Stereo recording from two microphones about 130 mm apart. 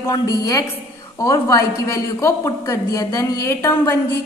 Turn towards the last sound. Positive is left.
turn(degrees=20)  # may be behind; listen again after turning